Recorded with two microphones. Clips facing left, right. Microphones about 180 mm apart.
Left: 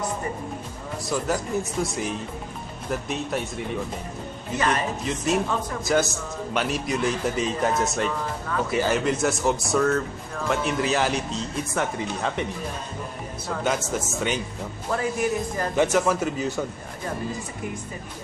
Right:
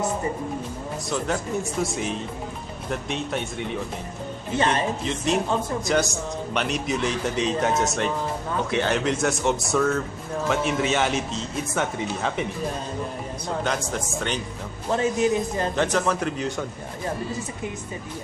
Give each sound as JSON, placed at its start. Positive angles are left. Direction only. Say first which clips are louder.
{"t": 1.0, "sound": "a man's voice", "louder": "left 1 dB", "side_deg": 5}
{"t": 4.6, "sound": "a man's voice", "louder": "right 2 dB", "side_deg": -30}
{"t": 5.0, "sound": "a man's voice", "louder": "even", "side_deg": 5}
{"t": 13.7, "sound": "a man's voice", "louder": "left 1 dB", "side_deg": 5}
{"t": 14.9, "sound": "a man's voice", "louder": "right 3 dB", "side_deg": -25}
{"t": 15.7, "sound": "a man's voice", "louder": "left 4 dB", "side_deg": 10}